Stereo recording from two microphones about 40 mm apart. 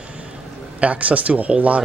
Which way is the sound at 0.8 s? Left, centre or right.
Right.